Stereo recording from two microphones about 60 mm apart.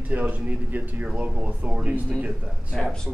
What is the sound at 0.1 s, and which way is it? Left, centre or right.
A man's voice, right.